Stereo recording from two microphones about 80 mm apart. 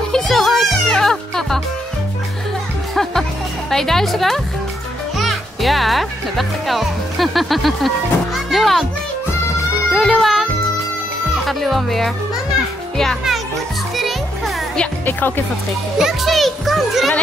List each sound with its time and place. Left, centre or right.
0.1 s music: centre
2.9 s music: centre
3.7 s a child's voice: centre
8.5 s music: centre
9.9 s music: centre
11.4 s a child's voice: centre
13.9 s music: centre
15.0 s speech: left
16.0 s children playing: centre